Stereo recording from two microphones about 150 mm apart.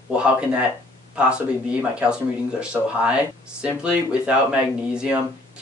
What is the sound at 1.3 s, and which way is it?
Speech, 10° right (ahead or behind).